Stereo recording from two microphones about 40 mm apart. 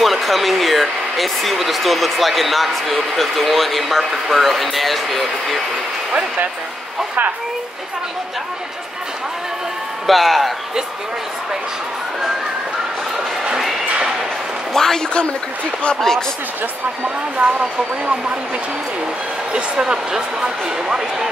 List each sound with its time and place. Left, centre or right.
0.0 s speech: centre
10.0 s speech: centre
14.7 s a man's voice: centre
17.4 s speech: right
19.5 s speech: centre